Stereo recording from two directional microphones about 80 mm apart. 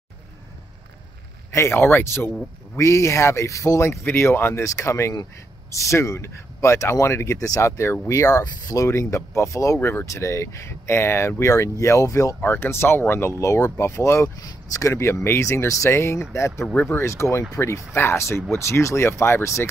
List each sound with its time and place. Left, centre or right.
1.5 s speech: left
2.7 s speech: left
9.8 s speech: left
13.4 s speech: left
14.4 s speech: left